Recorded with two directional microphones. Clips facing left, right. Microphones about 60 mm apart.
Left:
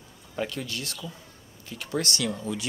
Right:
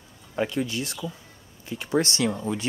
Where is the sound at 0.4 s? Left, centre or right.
Right.